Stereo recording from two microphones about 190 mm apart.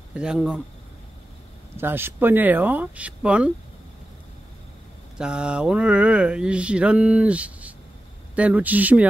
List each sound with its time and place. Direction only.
0.1 s speech: 5° right (ahead or behind)
1.8 s speech: 10° right (ahead or behind)
5.1 s speech: 5° right (ahead or behind)